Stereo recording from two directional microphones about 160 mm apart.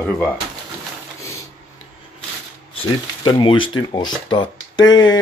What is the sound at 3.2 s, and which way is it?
Speech, 30° left (ahead or behind).